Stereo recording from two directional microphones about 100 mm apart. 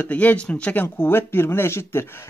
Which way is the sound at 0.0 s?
15° left (ahead or behind).